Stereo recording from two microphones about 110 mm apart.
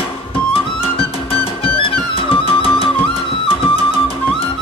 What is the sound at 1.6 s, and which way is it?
Music, 55° left (ahead or behind).